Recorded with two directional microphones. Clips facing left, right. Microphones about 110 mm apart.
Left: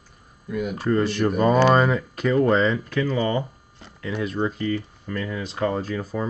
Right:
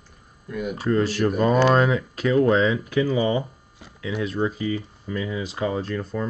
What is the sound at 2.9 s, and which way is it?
Speech, 10° right (ahead or behind).